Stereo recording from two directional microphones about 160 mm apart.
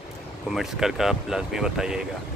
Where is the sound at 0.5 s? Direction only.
Centre (ahead or behind).